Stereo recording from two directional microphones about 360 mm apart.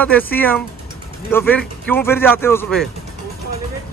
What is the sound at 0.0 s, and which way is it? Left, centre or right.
Speech, centre.